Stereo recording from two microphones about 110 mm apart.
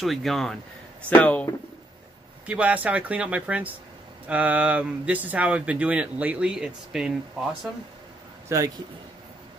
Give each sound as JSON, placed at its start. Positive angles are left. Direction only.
{"t": 0.0, "sound": "speech", "side_deg": 0}
{"t": 1.1, "sound": "speech", "side_deg": 15}
{"t": 2.4, "sound": "speech", "side_deg": -10}
{"t": 8.5, "sound": "a man's voice", "side_deg": -30}